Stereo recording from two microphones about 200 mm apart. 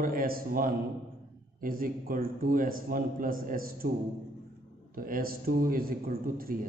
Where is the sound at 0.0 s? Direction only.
45° right (ahead or behind).